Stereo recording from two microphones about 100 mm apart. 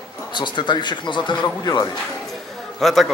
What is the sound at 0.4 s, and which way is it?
Speech, 50° left (ahead or behind).